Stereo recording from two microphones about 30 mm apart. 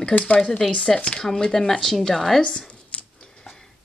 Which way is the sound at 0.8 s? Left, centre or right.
Left.